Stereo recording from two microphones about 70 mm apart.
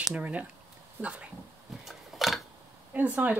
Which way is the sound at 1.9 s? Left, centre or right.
Centre.